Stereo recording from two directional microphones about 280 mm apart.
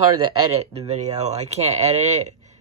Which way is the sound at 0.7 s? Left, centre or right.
Right.